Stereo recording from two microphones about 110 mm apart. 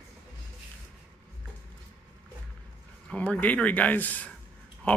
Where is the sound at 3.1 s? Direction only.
10° left (ahead or behind).